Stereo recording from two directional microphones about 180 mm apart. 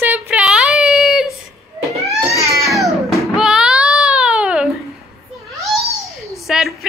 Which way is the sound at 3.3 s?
5° right (ahead or behind).